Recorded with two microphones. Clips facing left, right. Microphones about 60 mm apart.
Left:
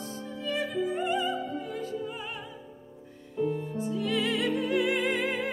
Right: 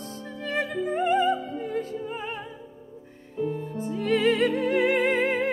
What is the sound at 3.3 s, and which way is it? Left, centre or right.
Music, right.